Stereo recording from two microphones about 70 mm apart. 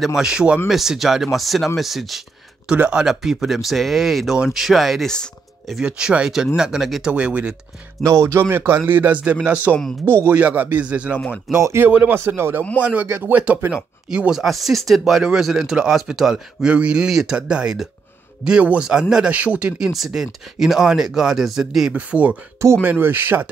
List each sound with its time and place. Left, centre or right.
0.0 s speech: centre
2.7 s speech: centre
5.0 s music: centre
5.8 s speech: centre
8.0 s speech: right
8.4 s speech: right; by 11.1 s centre
11.5 s speech: right
11.8 s speech: right
12.8 s speech: right
20.1 s speech: centre
21.9 s speech: centre
22.8 s speech: right